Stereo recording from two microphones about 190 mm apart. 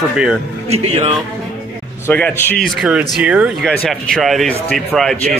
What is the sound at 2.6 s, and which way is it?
A man's voice, 5° right (ahead or behind).